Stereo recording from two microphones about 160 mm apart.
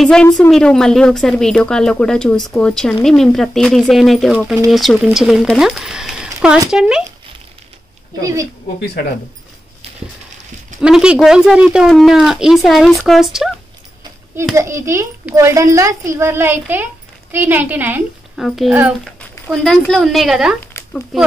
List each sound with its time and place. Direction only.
0.0 s speech: 5° left (ahead or behind)
10.8 s speech: 5° right (ahead or behind)
14.5 s a child's voice: 20° right (ahead or behind)
18.4 s speech: centre (ahead or behind)
19.1 s a sound: 5° left (ahead or behind)
19.8 s speech: 5° left (ahead or behind)
20.7 s a sound: 15° left (ahead or behind)
21.1 s speech: centre (ahead or behind)